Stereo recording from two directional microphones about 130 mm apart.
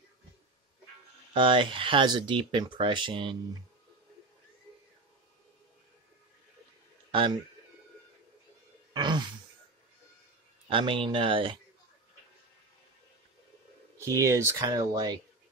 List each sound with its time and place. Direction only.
1.3 s speech: 40° right (ahead or behind)
7.1 s a man's voice: 40° right (ahead or behind)
8.9 s a sound: 35° right (ahead or behind)
10.7 s speech: 40° right (ahead or behind)
13.9 s speech: 25° right (ahead or behind)